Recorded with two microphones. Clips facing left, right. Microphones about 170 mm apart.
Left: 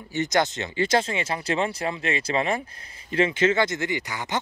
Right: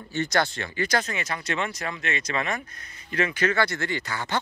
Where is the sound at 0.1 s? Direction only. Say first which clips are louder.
Left 2 dB; 15° left (ahead or behind).